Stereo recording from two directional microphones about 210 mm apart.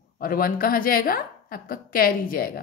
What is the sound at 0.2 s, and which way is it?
A woman's voice, 45° left (ahead or behind).